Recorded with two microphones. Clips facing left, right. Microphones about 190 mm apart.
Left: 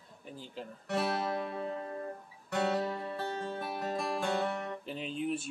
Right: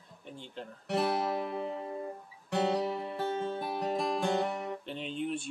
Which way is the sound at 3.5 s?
15° right (ahead or behind).